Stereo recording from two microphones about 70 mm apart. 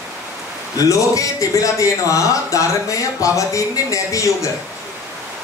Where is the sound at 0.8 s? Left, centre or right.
Left.